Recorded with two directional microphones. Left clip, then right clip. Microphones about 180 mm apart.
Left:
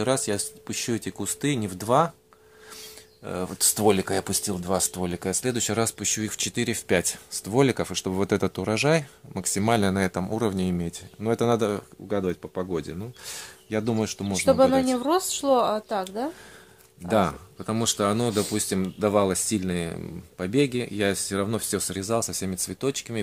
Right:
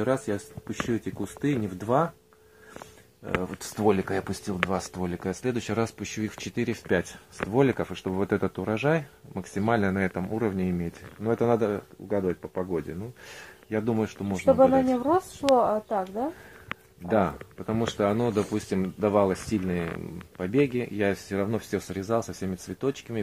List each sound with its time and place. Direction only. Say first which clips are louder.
0.0 s speech: left 2 dB; 40° left (ahead or behind)
3.4 s speech: left 4 dB; 50° left (ahead or behind)
14.9 s a woman's voice: left 1 dB; 10° left (ahead or behind)
17.1 s speech: left 2 dB; 50° left (ahead or behind)